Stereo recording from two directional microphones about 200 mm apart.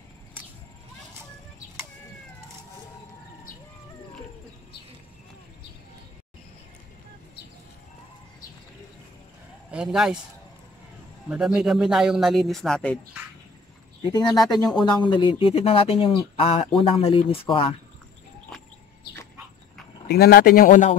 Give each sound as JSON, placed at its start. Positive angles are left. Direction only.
{"t": 9.7, "sound": "speech", "side_deg": -5}
{"t": 11.2, "sound": "speech", "side_deg": -5}
{"t": 14.1, "sound": "speech", "side_deg": 20}
{"t": 20.1, "sound": "a man's voice", "side_deg": 50}